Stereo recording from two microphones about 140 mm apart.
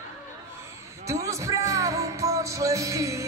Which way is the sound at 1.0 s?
20° right (ahead or behind).